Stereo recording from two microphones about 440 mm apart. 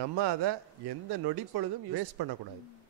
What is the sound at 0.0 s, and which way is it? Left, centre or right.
Speech, right.